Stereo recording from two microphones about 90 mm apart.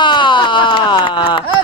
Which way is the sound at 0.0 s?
65° left (ahead or behind).